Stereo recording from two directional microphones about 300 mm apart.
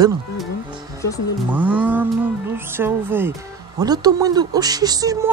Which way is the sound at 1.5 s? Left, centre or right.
Centre.